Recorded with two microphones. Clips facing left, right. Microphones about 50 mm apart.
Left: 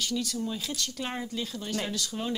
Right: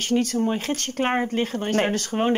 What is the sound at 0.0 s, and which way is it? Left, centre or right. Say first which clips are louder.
Speech: right 9 dB; right.